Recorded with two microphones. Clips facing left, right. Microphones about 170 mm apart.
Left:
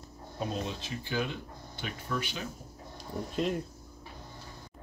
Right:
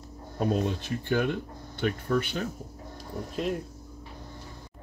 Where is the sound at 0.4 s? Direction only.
55° right (ahead or behind).